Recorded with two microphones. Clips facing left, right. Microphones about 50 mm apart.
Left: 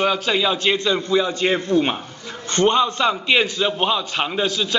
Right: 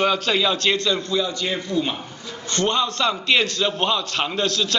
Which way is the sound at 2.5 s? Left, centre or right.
Left.